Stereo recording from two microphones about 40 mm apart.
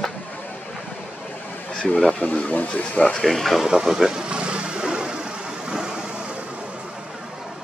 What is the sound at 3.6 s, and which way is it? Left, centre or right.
Speech, centre.